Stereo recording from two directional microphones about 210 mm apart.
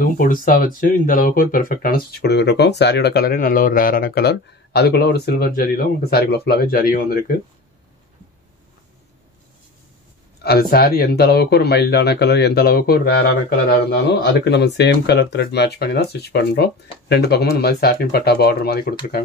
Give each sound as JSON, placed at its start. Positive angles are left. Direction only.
{"t": 0.0, "sound": "speech", "side_deg": 40}
{"t": 10.4, "sound": "speech", "side_deg": 50}